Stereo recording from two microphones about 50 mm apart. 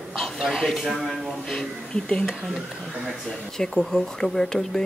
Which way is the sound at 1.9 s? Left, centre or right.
Left.